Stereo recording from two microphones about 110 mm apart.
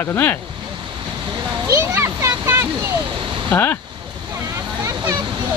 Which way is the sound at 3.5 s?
20° left (ahead or behind).